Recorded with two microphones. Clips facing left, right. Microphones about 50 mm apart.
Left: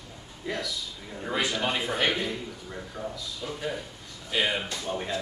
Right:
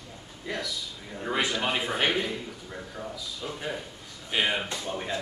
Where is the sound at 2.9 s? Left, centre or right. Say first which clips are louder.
Left 3 dB; centre.